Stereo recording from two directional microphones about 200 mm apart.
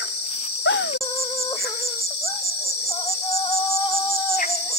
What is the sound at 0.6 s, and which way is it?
Insect, 70° left (ahead or behind).